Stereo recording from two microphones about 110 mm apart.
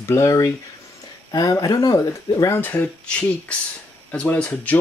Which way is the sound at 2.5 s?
15° left (ahead or behind).